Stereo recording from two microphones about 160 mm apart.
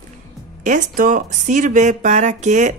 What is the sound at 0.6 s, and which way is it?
Speech, 55° right (ahead or behind).